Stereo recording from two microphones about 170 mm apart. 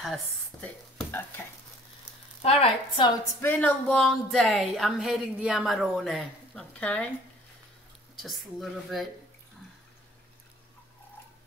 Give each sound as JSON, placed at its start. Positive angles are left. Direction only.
{"t": 0.0, "sound": "a woman's voice", "side_deg": 5}
{"t": 2.4, "sound": "a woman's voice", "side_deg": 35}
{"t": 3.3, "sound": "speech", "side_deg": 10}
{"t": 8.2, "sound": "speech", "side_deg": 0}